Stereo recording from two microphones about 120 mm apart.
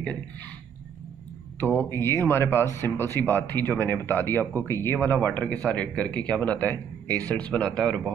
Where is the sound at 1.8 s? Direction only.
20° left (ahead or behind).